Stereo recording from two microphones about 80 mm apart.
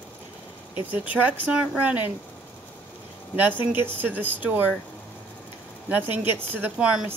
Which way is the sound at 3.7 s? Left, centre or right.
Right.